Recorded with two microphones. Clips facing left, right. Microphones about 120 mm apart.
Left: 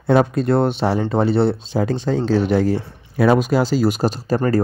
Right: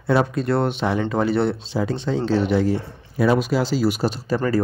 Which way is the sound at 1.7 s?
45° left (ahead or behind).